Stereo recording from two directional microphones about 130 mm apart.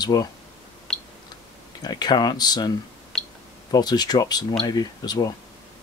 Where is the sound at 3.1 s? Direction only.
5° left (ahead or behind).